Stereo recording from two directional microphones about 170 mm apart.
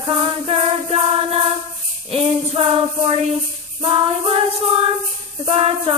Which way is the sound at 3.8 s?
35° right (ahead or behind).